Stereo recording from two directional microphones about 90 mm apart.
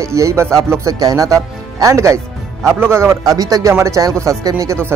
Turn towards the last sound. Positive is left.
turn(degrees=-35)  # may be behind; listen again after turning